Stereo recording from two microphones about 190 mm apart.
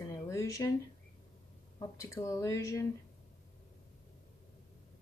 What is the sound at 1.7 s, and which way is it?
Speech, 15° left (ahead or behind).